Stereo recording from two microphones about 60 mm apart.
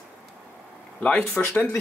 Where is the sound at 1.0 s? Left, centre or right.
Centre.